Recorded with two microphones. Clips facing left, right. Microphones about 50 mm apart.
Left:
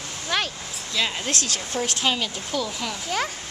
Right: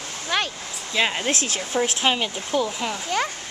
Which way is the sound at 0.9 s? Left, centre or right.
Right.